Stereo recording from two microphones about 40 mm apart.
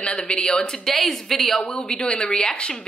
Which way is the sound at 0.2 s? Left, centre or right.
Left.